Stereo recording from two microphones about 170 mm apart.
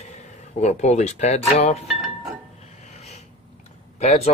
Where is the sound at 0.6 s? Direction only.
40° left (ahead or behind).